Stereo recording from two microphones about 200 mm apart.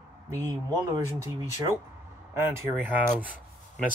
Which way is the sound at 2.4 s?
10° right (ahead or behind).